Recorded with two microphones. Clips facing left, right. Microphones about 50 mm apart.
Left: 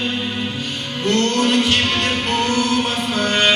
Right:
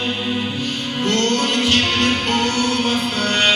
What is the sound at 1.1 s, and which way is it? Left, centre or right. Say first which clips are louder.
Music: left 2 dB; centre.